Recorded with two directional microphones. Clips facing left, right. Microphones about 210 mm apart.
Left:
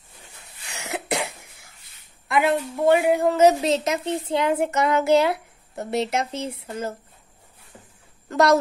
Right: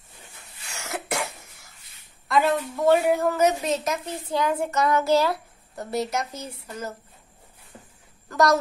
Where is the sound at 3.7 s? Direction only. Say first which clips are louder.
Left 4 dB; 25° left (ahead or behind).